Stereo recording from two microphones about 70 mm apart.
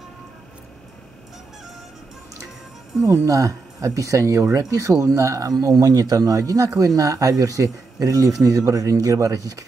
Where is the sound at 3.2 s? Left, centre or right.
Right.